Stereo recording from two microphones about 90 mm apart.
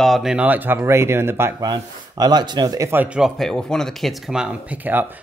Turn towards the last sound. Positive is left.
turn(degrees=-20)  # may be behind; listen again after turning